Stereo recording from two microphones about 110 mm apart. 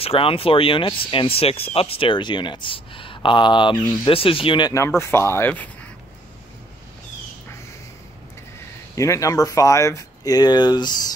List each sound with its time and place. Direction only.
0.0 s speech: 60° left (ahead or behind)
4.0 s speech: 55° left (ahead or behind)
4.7 s speech: 25° left (ahead or behind)
8.9 s speech: 30° left (ahead or behind)